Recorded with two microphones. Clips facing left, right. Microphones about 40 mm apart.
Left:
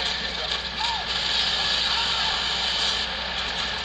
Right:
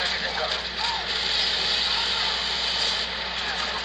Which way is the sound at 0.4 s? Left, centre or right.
Left.